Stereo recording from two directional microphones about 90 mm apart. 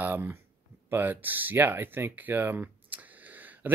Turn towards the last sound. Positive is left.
turn(degrees=-20)  # may be behind; listen again after turning